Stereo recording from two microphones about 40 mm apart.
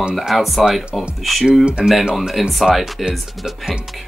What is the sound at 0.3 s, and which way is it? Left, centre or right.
Speech, centre.